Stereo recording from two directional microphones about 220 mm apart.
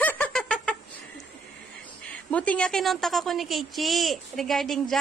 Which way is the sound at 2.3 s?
5° left (ahead or behind).